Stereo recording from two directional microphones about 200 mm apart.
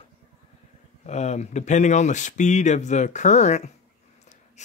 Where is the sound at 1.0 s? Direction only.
35° left (ahead or behind).